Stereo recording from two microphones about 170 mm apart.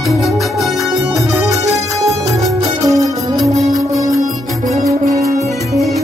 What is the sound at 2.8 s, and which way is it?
Music, 20° right (ahead or behind).